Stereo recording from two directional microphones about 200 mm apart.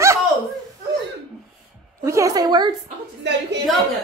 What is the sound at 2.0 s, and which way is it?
Speech, 15° right (ahead or behind).